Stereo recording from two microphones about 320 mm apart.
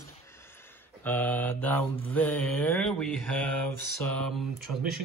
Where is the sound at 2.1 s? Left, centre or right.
Centre.